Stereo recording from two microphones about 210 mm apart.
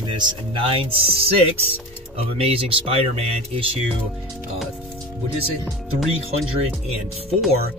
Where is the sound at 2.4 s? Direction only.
30° right (ahead or behind).